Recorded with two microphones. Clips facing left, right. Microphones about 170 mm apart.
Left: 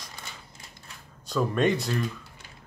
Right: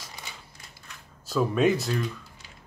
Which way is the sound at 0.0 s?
5° right (ahead or behind).